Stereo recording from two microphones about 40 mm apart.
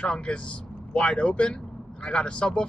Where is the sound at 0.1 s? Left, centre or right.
Left.